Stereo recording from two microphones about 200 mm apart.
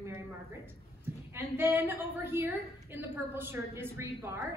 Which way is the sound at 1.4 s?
10° right (ahead or behind).